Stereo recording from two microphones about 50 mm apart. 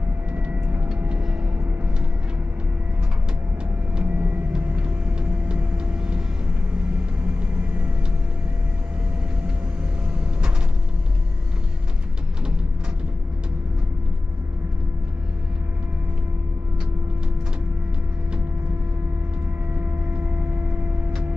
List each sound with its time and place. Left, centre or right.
0.3 s vehicle: right
3.9 s vehicle: centre
5.9 s vehicle: centre
7.5 s vehicle: right
19.7 s vehicle: right